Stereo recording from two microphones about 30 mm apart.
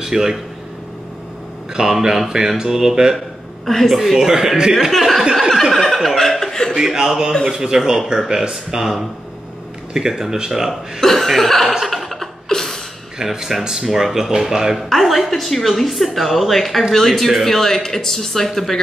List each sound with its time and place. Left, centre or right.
0.0 s speech: centre
1.8 s speech: centre
3.6 s a woman's voice: centre
3.9 s speech: centre
4.9 s a woman's voice: centre
5.7 s a sound: centre
6.4 s chuckle: centre
6.7 s speech: centre
9.9 s speech: centre
11.0 s speech: centre
11.8 s a sound: centre
12.5 s a sound: left
13.2 s speech: centre
15.0 s a woman's voice: centre